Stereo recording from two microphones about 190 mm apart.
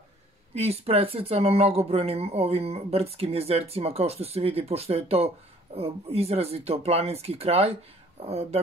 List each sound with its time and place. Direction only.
0.6 s speech: 30° right (ahead or behind)